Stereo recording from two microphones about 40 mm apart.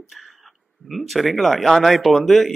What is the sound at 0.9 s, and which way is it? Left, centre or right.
Speech, centre.